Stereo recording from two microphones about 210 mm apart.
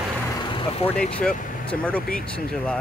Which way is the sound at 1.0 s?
5° left (ahead or behind).